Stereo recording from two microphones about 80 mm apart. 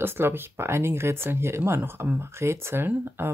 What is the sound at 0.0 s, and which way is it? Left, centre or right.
Speech, right.